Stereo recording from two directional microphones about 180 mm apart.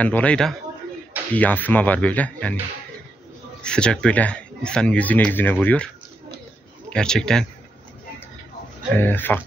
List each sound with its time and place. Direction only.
0.0 s a man's voice: 5° left (ahead or behind)
3.6 s a man's voice: 5° left (ahead or behind)
6.9 s a man's voice: 5° left (ahead or behind)
8.9 s a man's voice: 10° left (ahead or behind)